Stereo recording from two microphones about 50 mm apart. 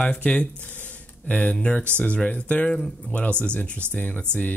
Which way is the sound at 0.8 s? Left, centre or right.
Left.